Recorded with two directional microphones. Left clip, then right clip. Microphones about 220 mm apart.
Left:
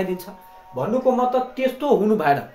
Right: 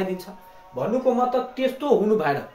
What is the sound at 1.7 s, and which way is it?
Speech, 25° left (ahead or behind).